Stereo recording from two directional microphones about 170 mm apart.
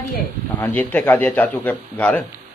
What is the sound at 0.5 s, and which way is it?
A man's voice, 10° left (ahead or behind).